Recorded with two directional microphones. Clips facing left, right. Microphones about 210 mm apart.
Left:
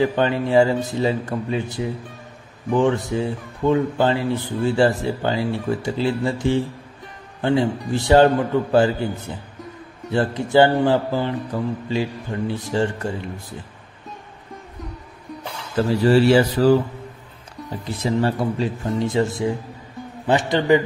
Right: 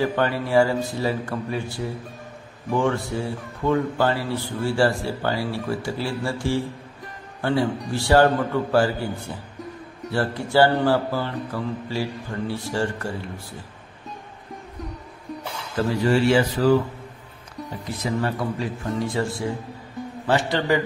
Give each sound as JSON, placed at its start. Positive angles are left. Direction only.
{"t": 0.0, "sound": "a man's voice", "side_deg": 20}
{"t": 16.1, "sound": "speech", "side_deg": 35}
{"t": 18.0, "sound": "a man's voice", "side_deg": 25}